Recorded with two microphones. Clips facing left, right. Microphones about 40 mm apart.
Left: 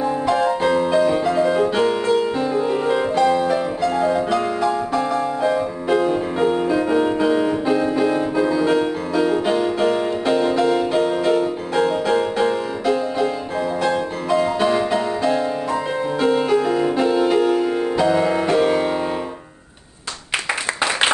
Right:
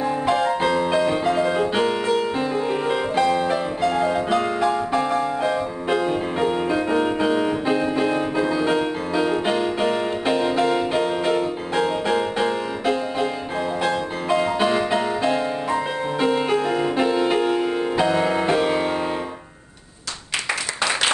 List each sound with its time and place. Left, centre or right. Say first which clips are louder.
0.0 s music: left 2 dB; centre
5.2 s music: left 3 dB; centre
6.0 s music: left 3 dB; centre